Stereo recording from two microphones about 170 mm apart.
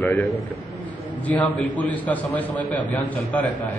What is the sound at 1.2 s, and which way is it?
A man's voice, 10° left (ahead or behind).